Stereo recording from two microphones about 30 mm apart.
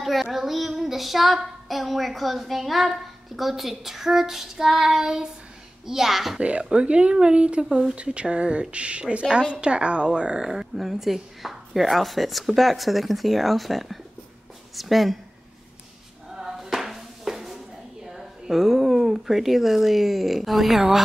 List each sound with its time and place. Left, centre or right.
0.0 s child singing: centre
3.3 s speech: centre; by 5.3 s right
5.9 s speech: centre
6.7 s speech: right
10.8 s speech: centre
11.4 s child singing: centre
16.3 s music: centre
18.0 s speech: centre